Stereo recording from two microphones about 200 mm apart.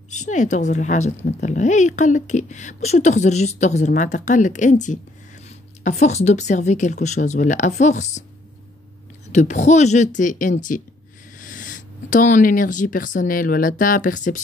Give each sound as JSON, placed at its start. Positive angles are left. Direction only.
{"t": 0.1, "sound": "speech", "side_deg": 40}
{"t": 9.3, "sound": "speech", "side_deg": 35}